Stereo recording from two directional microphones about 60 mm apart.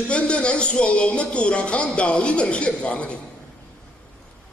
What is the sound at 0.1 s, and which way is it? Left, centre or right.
Speech, centre.